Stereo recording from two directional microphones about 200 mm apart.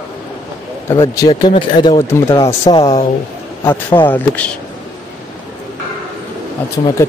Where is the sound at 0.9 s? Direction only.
20° left (ahead or behind).